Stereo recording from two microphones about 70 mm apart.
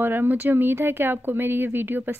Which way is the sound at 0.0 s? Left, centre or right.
Right.